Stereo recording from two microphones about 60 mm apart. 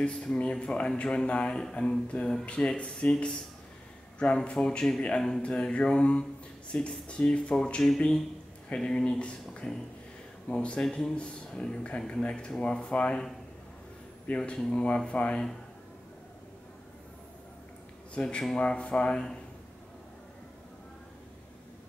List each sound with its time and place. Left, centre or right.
0.0 s speech: centre
14.2 s speech: centre
18.1 s speech: centre